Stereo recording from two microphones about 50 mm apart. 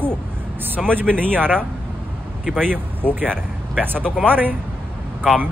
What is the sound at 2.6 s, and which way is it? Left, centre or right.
Speech, right.